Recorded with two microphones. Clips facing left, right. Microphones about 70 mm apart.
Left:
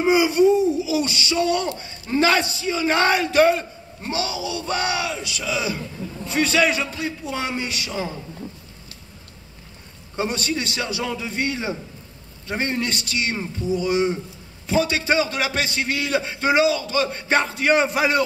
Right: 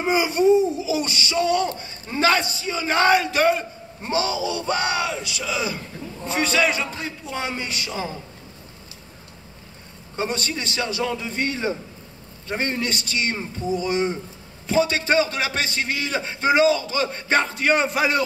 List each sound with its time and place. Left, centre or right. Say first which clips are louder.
0.0 s a man's voice: left 3 dB; centre
4.1 s a sound: right 3 dB; right
5.1 s a man's voice: left 1 dB; centre
10.4 s a man's voice: left 1 dB; centre